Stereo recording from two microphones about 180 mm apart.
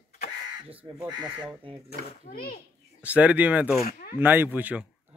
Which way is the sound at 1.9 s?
55° left (ahead or behind).